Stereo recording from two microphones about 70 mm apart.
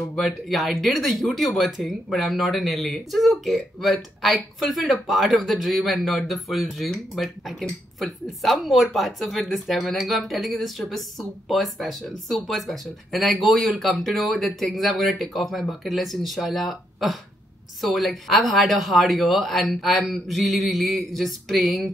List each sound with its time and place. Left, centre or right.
0.1 s speech: centre